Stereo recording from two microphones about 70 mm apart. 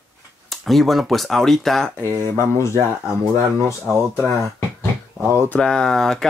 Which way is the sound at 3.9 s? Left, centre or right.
Centre.